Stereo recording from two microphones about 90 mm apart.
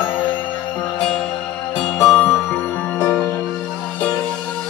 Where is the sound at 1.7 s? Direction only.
5° left (ahead or behind).